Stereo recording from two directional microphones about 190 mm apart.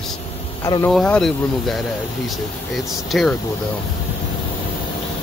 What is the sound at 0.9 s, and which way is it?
Speech, centre (ahead or behind).